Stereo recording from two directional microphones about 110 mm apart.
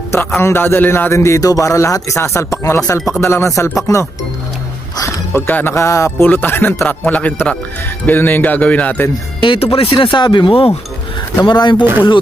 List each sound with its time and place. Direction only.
0.4 s a man's voice: 20° left (ahead or behind)
5.3 s a man's voice: 20° left (ahead or behind)
9.4 s speech: 50° left (ahead or behind)
11.4 s speech: 45° left (ahead or behind)